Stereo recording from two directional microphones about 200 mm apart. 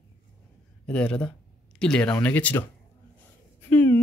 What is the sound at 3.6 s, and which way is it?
Speech, 10° left (ahead or behind).